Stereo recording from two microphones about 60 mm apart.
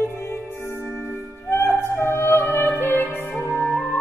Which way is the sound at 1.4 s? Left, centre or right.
Left.